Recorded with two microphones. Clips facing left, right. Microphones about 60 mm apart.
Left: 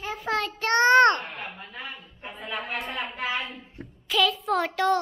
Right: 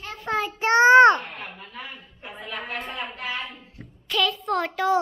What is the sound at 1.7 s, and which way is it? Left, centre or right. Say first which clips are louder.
Speech: even; centre.